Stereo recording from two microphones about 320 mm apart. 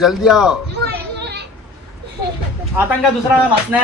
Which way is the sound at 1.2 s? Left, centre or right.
Right.